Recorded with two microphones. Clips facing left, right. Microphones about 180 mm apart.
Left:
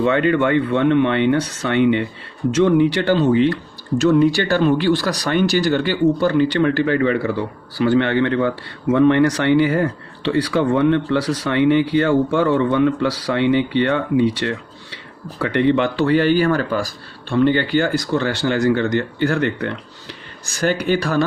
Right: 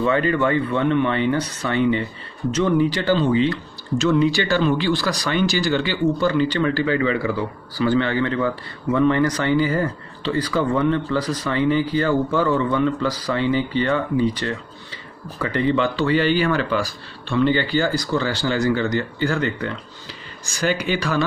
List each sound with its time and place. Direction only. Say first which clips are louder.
0.0 s speech: left 3 dB; 75° left (ahead or behind); by 7.3 s 50° left (ahead or behind)
7.8 s speech: left 3 dB; 65° left (ahead or behind)
16.4 s speech: left 2 dB; 40° left (ahead or behind)
17.3 s speech: left 3 dB; 55° left (ahead or behind)